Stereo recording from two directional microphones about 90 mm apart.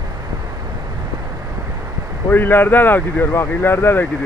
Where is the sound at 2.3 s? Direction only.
20° left (ahead or behind).